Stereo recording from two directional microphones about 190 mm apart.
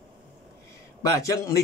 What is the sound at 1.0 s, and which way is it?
Speech, 15° left (ahead or behind).